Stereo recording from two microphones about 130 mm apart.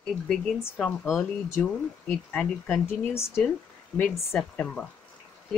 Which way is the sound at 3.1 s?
20° left (ahead or behind).